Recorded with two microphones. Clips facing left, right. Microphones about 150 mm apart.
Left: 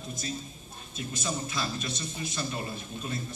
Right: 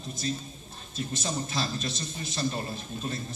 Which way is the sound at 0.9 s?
30° right (ahead or behind).